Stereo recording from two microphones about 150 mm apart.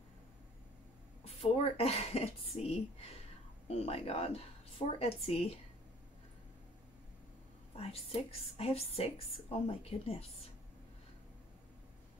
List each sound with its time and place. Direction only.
1.2 s a woman's voice: 45° left (ahead or behind)
7.7 s a woman's voice: 40° left (ahead or behind)